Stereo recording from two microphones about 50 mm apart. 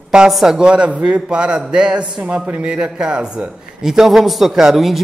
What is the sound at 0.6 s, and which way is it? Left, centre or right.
Speech, centre.